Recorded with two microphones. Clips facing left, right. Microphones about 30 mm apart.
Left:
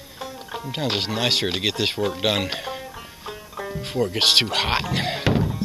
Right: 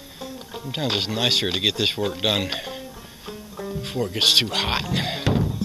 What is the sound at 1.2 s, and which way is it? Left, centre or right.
Speech, centre.